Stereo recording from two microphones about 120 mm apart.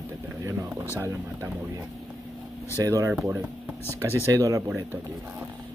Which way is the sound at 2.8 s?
25° right (ahead or behind).